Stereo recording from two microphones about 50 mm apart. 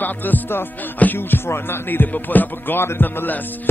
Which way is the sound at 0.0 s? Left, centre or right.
Left.